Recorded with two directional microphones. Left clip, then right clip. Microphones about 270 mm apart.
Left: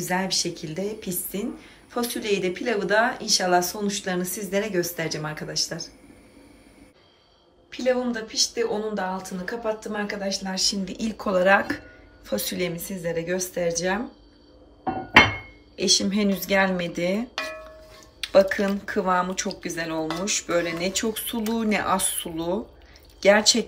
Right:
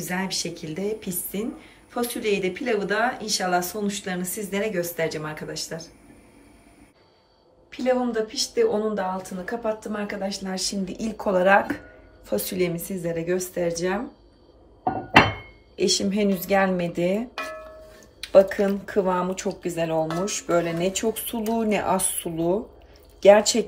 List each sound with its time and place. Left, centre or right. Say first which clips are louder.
0.0 s speech: left 3 dB; centre
7.7 s speech: right 1 dB; centre
15.7 s speech: left 1 dB; centre